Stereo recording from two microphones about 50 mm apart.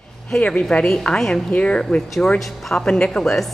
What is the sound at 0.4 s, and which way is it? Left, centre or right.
Speech, left.